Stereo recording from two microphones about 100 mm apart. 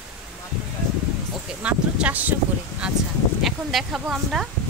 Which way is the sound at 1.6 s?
15° right (ahead or behind).